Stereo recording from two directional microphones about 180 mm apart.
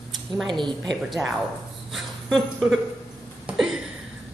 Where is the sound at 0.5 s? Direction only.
25° right (ahead or behind).